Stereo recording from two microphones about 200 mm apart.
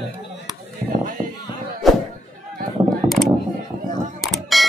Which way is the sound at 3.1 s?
Centre (ahead or behind).